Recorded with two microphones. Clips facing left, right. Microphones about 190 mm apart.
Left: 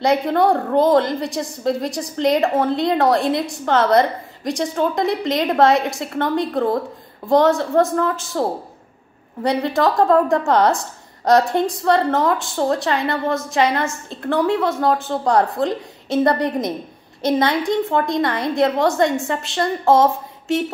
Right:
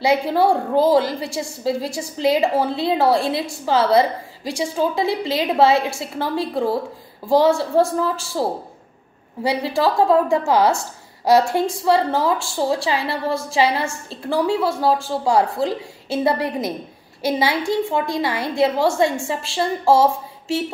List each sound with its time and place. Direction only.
0.0 s a woman's voice: 5° right (ahead or behind)
13.3 s a woman's voice: 30° right (ahead or behind)
13.6 s a woman's voice: 5° right (ahead or behind)